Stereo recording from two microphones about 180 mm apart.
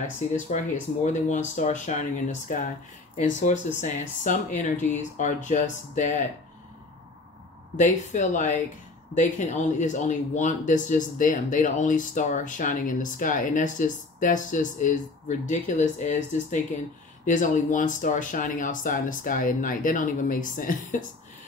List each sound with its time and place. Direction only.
1.0 s speech: 40° left (ahead or behind)
7.7 s speech: 45° left (ahead or behind)